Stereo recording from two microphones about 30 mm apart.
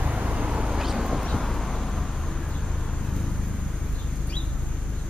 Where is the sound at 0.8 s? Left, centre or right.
Centre.